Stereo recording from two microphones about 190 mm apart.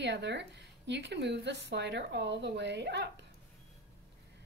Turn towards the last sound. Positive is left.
turn(degrees=-65)  # may be behind; listen again after turning